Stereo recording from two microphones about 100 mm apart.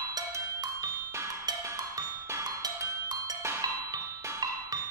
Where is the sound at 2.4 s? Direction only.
40° right (ahead or behind).